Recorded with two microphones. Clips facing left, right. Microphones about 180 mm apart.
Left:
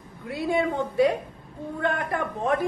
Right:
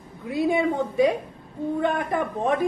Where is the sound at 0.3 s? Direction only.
20° right (ahead or behind).